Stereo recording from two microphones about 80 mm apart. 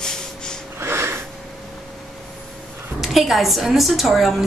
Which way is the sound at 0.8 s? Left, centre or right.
Right.